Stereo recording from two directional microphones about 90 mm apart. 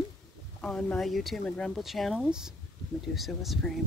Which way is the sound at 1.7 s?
Centre (ahead or behind).